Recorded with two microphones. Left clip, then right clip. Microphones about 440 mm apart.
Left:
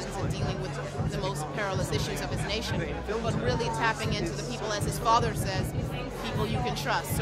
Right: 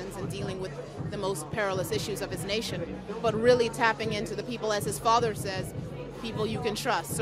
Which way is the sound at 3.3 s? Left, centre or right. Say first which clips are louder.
Right 10 dB; right.